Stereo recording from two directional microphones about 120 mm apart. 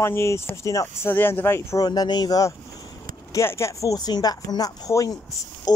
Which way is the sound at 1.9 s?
35° left (ahead or behind).